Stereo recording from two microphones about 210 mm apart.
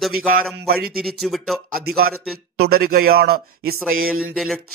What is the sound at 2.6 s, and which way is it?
Speech, 45° right (ahead or behind).